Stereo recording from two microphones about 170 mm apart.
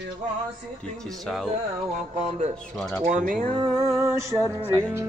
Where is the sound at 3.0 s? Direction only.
50° right (ahead or behind).